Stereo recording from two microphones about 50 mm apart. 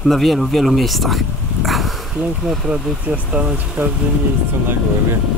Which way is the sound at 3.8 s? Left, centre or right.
Right.